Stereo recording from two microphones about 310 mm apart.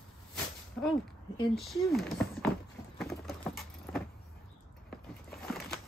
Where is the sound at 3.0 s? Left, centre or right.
Centre.